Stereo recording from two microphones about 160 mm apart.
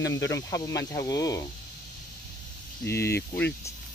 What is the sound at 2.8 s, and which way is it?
Speech, 15° left (ahead or behind).